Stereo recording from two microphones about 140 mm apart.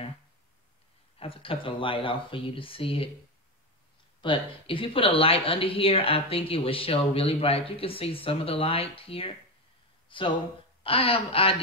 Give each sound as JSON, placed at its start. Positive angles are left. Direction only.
{"t": 1.2, "sound": "speech", "side_deg": 40}
{"t": 4.2, "sound": "speech", "side_deg": 40}
{"t": 10.0, "sound": "a sound", "side_deg": 35}
{"t": 10.8, "sound": "speech", "side_deg": 40}